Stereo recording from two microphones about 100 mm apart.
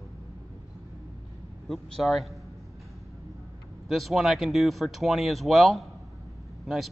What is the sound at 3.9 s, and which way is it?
Speech, centre (ahead or behind).